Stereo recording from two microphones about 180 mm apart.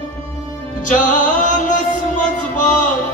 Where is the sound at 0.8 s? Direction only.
45° left (ahead or behind).